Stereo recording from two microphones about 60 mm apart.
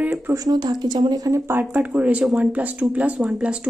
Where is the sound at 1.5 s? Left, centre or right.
Right.